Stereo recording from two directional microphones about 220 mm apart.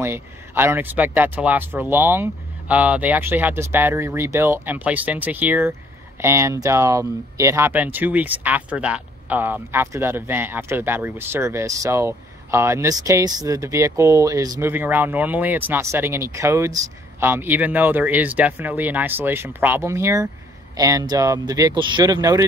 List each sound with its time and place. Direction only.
0.0 s speech: 10° right (ahead or behind)